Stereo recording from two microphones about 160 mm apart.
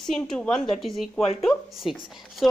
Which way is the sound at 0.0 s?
5° left (ahead or behind).